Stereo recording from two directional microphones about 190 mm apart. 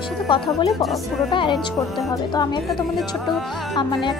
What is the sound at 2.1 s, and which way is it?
Speech, 20° left (ahead or behind).